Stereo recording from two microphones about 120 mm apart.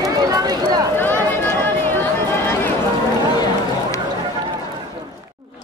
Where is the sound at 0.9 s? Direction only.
15° left (ahead or behind).